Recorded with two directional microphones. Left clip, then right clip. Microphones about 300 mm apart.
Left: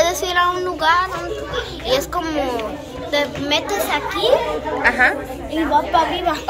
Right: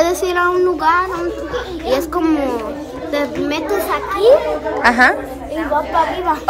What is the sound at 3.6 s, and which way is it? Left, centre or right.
Speech, right.